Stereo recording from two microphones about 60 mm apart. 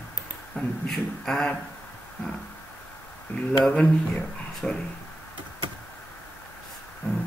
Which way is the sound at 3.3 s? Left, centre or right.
Left.